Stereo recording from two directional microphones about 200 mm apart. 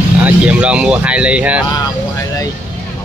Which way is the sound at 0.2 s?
5° right (ahead or behind).